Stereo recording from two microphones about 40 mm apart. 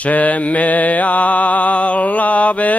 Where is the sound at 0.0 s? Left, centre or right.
Left.